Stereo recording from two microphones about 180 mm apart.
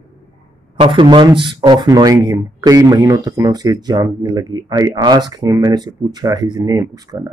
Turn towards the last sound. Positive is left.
turn(degrees=-20)  # may be behind; listen again after turning